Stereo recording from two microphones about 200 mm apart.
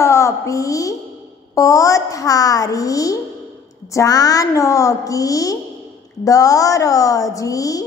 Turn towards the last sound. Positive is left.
turn(degrees=15)  # may be behind; listen again after turning